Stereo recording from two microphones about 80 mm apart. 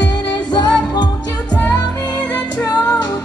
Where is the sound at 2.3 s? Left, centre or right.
Left.